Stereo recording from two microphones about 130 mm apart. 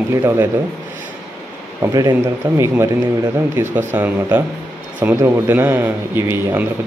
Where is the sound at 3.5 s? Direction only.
20° right (ahead or behind).